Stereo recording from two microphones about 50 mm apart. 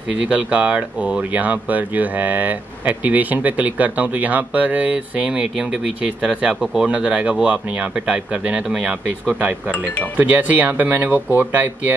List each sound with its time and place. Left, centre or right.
0.1 s speech: right
10.1 s speech: right